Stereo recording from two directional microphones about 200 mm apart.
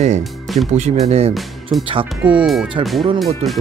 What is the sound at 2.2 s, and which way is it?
Speech, 5° right (ahead or behind).